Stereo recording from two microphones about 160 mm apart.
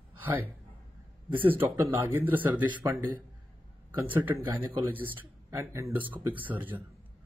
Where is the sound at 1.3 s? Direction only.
10° right (ahead or behind).